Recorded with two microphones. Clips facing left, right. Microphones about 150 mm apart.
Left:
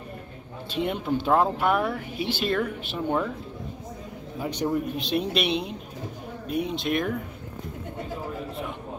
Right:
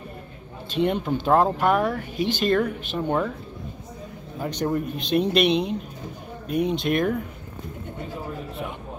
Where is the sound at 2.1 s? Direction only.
45° right (ahead or behind).